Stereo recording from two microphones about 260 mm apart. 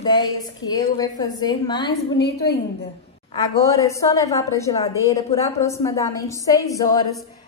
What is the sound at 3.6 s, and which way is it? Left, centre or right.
A woman's voice, centre.